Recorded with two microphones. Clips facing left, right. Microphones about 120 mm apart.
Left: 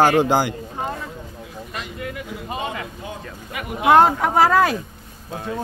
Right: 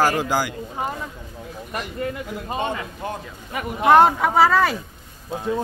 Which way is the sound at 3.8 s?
5° left (ahead or behind).